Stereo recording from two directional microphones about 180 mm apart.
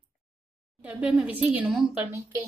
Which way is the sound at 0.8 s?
5° right (ahead or behind).